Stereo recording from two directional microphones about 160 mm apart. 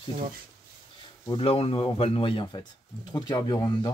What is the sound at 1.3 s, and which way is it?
Speech, 35° left (ahead or behind).